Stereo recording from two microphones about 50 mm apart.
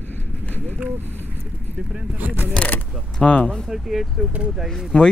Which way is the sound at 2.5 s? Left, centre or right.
Left.